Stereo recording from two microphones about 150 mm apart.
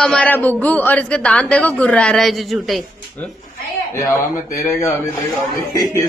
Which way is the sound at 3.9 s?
20° left (ahead or behind).